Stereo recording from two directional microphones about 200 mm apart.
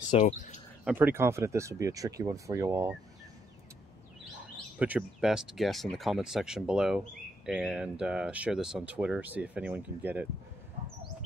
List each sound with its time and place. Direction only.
0.1 s speech: 35° left (ahead or behind)
0.8 s speech: 10° right (ahead or behind)
4.7 s speech: 5° right (ahead or behind)